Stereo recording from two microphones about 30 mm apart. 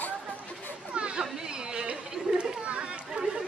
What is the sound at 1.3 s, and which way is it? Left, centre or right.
Chatter, right.